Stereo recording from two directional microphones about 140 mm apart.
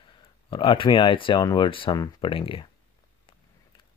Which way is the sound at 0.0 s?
35° left (ahead or behind).